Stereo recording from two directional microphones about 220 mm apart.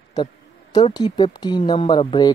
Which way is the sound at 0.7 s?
20° left (ahead or behind).